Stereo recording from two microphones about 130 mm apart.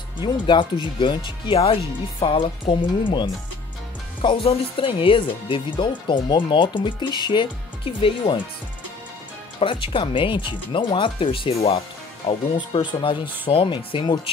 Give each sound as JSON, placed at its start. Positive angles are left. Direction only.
{"t": 0.2, "sound": "speech", "side_deg": 40}
{"t": 9.6, "sound": "speech", "side_deg": 40}
{"t": 12.5, "sound": "speech", "side_deg": 40}